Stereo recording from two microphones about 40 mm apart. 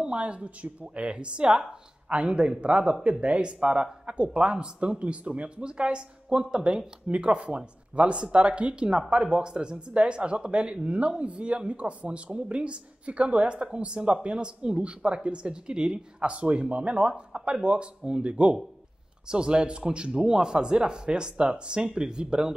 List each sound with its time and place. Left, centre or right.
0.0 s speech: right